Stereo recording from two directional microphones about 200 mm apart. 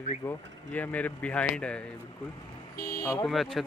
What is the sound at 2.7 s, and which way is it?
Speech, 45° left (ahead or behind).